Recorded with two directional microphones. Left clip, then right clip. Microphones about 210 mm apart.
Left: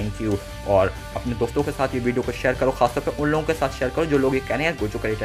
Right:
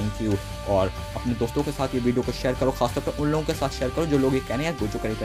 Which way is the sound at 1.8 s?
35° right (ahead or behind).